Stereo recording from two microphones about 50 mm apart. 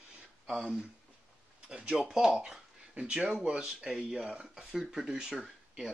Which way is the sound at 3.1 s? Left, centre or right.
Right.